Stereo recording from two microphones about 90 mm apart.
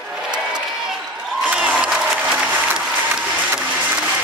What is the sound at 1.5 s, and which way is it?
Applause, 15° right (ahead or behind).